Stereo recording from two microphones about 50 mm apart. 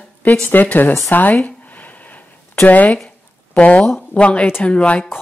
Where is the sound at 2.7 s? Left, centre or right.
Left.